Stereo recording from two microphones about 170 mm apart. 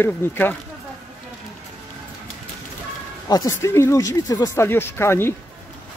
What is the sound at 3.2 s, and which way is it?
Speech, 20° left (ahead or behind).